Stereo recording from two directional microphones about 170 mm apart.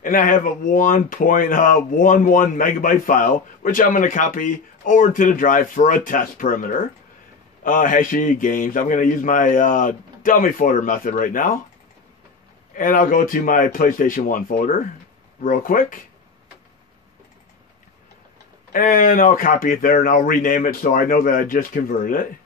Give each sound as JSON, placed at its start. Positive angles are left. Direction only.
{"t": 0.0, "sound": "speech", "side_deg": 55}
{"t": 12.7, "sound": "speech", "side_deg": 50}
{"t": 18.7, "sound": "speech", "side_deg": 55}